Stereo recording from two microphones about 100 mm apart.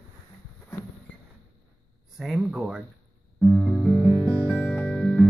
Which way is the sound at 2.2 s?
5° right (ahead or behind).